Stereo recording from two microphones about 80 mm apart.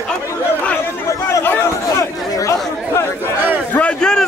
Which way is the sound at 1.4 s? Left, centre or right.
Left.